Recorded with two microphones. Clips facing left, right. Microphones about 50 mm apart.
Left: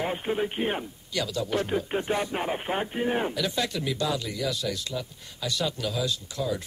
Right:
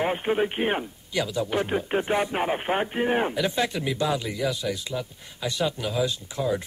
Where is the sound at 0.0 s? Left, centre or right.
Right.